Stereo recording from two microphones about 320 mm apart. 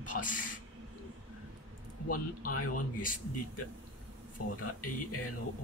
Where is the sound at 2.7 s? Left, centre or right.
Left.